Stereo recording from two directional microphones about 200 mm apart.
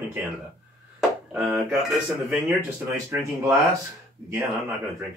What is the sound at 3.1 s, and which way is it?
Speech, 15° right (ahead or behind).